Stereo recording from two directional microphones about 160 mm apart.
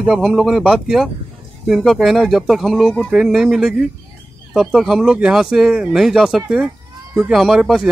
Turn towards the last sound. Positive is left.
turn(degrees=0)  # may be behind; listen again after turning